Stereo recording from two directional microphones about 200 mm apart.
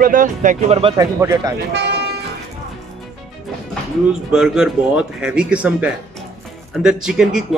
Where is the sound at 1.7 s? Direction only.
55° right (ahead or behind).